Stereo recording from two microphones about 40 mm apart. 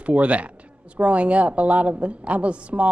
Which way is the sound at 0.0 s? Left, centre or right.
Right.